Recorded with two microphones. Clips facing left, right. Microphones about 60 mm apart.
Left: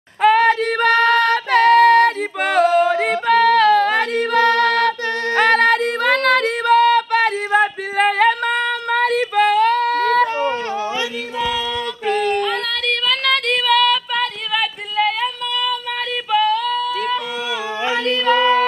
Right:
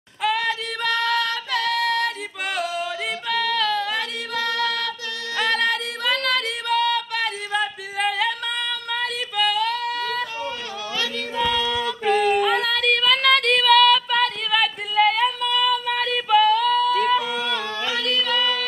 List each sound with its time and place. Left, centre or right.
0.2 s female singing: left
11.3 s music: centre
12.1 s female singing: centre
16.3 s a sound: centre
17.8 s singing: left